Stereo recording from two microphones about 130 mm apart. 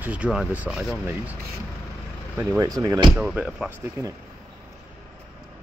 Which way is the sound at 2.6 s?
30° right (ahead or behind).